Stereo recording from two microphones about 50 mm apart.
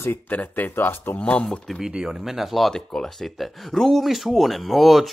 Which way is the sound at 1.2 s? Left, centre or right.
Left.